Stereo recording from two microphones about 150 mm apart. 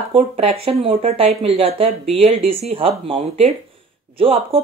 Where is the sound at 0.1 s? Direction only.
40° right (ahead or behind).